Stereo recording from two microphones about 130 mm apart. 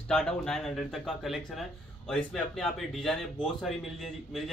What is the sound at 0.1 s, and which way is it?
A man's voice, 5° left (ahead or behind).